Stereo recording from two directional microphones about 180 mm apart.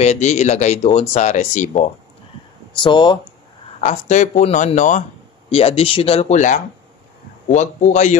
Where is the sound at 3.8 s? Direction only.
40° left (ahead or behind).